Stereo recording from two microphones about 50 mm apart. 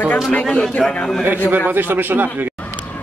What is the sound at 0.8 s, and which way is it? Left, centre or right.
Speech, centre.